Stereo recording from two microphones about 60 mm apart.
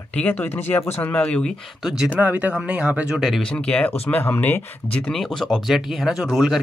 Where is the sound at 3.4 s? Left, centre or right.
Centre.